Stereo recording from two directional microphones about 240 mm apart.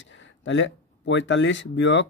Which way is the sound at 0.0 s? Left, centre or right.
Left.